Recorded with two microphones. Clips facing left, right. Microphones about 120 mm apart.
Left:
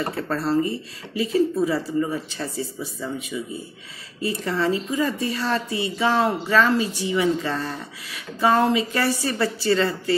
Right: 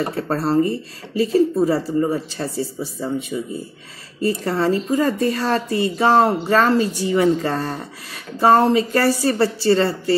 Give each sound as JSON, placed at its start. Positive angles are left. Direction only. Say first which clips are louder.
{"t": 0.1, "sound": "speech", "louder": "right 3 dB", "side_deg": -40}